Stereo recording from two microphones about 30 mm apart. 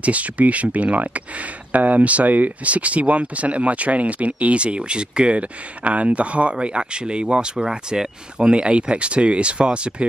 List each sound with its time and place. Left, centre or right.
0.0 s speech: right
6.6 s speech: right